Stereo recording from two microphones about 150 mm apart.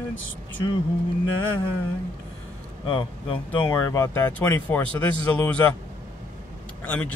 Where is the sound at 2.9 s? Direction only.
35° left (ahead or behind).